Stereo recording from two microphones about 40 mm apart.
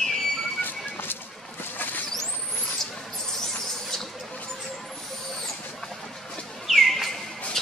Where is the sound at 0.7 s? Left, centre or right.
Left.